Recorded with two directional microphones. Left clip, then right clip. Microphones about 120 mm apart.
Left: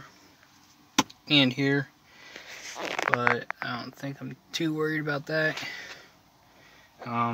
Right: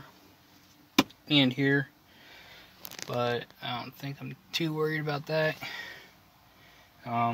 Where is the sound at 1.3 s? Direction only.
40° left (ahead or behind).